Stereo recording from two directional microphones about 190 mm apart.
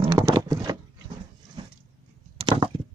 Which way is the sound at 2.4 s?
25° right (ahead or behind).